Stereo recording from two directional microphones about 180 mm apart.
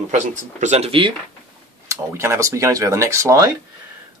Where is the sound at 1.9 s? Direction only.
15° right (ahead or behind).